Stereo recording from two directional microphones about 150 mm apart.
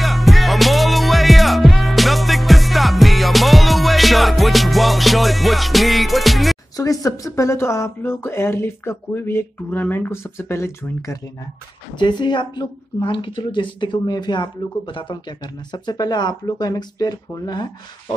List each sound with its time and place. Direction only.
0.0 s music: centre (ahead or behind)
6.8 s speech: 20° left (ahead or behind)
12.0 s a woman's voice: 30° left (ahead or behind)